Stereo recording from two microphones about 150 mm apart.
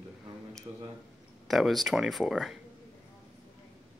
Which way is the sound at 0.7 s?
25° right (ahead or behind).